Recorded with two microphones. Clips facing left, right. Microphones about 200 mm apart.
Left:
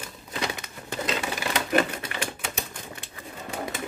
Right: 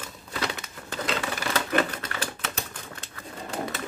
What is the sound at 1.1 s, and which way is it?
Typewriter, 10° left (ahead or behind).